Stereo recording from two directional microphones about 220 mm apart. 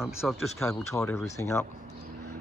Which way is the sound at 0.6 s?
10° left (ahead or behind).